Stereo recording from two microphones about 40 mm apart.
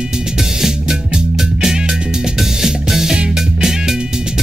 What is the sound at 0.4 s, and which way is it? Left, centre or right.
Music, centre.